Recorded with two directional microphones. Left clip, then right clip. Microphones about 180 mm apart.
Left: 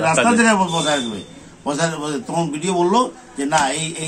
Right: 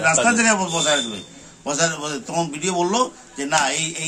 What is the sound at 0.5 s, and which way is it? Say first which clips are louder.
A man's voice: left 2 dB; 10° right (ahead or behind).